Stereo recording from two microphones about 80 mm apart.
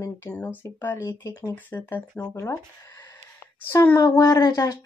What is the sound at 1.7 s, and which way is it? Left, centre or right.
Speech, left.